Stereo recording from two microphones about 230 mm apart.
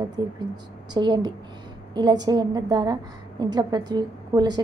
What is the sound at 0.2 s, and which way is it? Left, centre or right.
A woman's voice, centre.